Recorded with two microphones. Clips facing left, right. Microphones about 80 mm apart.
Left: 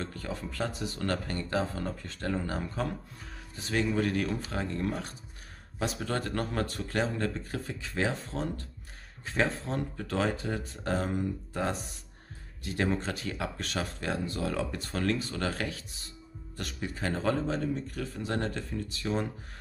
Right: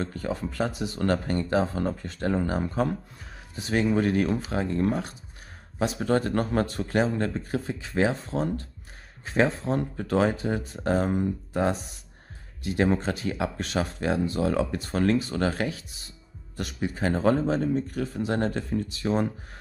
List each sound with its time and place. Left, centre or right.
0.0 s speech: right
6.0 s speech: right